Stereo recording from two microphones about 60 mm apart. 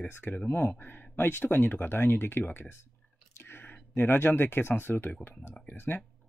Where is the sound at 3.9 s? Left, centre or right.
Left.